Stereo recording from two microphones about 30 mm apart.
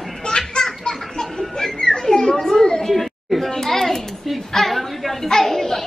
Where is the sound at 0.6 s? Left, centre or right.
Centre.